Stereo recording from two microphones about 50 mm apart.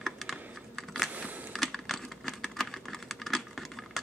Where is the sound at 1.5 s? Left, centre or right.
Centre.